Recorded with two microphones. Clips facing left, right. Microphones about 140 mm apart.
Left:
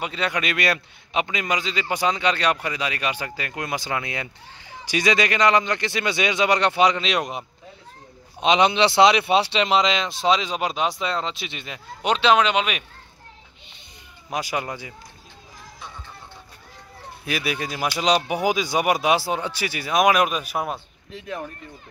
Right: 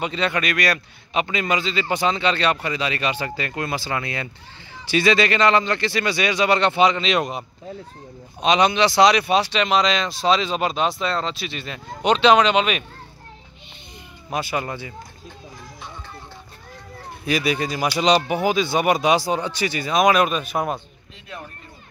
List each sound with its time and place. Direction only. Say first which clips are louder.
0.0 s speech: right 3 dB; 5° left (ahead or behind)
0.4 s a man's voice: right 1 dB; 20° left (ahead or behind)
8.4 s speech: even; 20° left (ahead or behind)
14.3 s speech: right 2 dB; 10° left (ahead or behind)
17.2 s speech: right 5 dB; 5° left (ahead or behind)